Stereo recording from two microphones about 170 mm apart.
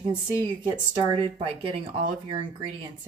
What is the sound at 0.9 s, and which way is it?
Speech, 30° right (ahead or behind).